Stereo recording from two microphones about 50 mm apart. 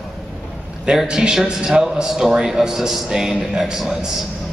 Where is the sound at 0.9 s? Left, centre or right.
Centre.